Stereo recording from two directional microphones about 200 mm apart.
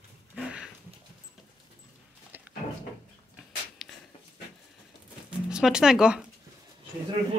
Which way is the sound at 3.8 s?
Centre (ahead or behind).